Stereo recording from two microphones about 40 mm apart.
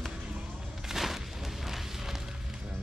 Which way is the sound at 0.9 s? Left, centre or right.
Centre.